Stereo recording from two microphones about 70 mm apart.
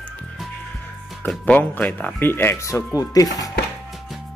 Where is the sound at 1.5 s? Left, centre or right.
Left.